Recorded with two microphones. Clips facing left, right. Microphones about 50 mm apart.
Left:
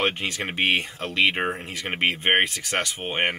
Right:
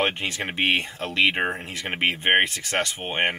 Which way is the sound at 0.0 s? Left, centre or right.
Centre.